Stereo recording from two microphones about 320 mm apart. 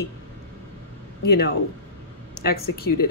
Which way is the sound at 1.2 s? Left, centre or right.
Left.